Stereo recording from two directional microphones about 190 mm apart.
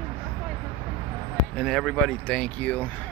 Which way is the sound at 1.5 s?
Centre (ahead or behind).